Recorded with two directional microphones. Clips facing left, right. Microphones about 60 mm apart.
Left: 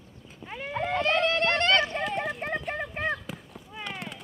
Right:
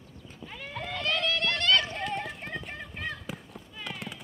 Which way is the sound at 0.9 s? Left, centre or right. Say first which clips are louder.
Left 5 dB; left.